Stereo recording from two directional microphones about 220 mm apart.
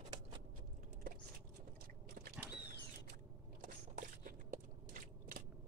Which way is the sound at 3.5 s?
35° right (ahead or behind).